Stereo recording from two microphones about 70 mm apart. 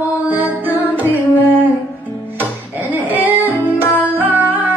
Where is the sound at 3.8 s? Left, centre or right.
Right.